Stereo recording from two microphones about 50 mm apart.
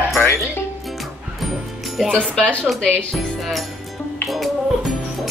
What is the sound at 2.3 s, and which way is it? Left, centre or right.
Speech, centre.